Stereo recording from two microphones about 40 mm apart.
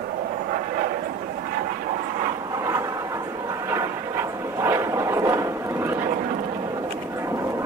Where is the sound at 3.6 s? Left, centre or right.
Right.